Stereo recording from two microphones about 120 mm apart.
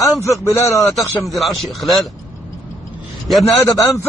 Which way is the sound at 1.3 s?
Centre (ahead or behind).